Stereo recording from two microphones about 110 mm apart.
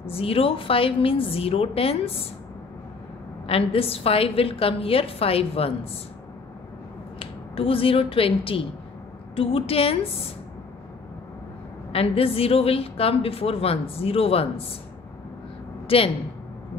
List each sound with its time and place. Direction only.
0.1 s a woman's voice: 60° left (ahead or behind)
3.4 s a woman's voice: 60° left (ahead or behind)
7.2 s a woman's voice: 55° left (ahead or behind)
11.9 s a woman's voice: 60° left (ahead or behind)
15.9 s a woman's voice: 55° left (ahead or behind)